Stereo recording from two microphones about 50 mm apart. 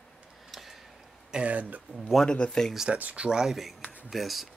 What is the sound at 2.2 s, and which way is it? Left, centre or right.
Speech, centre.